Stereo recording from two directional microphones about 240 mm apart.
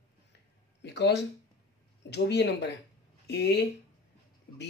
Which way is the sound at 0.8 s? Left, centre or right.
Left.